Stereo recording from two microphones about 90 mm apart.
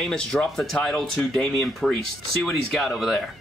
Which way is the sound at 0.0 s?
5° left (ahead or behind).